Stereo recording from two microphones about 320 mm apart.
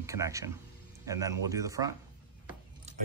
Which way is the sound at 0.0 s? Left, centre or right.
Centre.